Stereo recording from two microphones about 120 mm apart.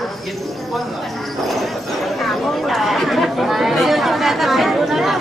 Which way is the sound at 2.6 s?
Centre (ahead or behind).